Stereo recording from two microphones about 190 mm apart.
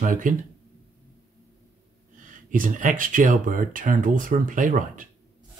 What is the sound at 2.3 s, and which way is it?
Speech, 45° right (ahead or behind).